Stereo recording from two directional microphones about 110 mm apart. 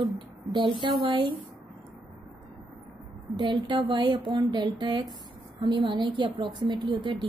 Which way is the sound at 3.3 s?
40° right (ahead or behind).